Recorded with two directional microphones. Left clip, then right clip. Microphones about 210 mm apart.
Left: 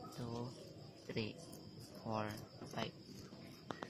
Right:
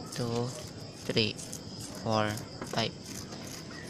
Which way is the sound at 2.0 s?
20° right (ahead or behind).